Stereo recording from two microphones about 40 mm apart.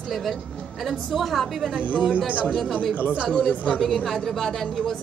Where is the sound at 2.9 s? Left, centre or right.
Left.